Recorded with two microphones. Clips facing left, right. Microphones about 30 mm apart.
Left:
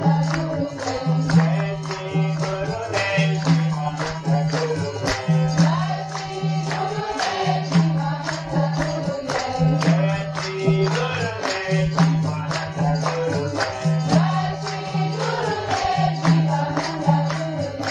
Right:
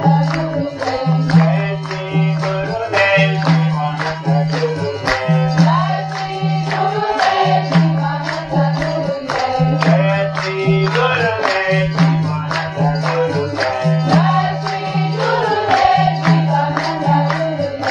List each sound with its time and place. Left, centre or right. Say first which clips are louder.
0.0 s music: right 6 dB; right
2.9 s music: right 9 dB; right
9.6 s music: right 5 dB; right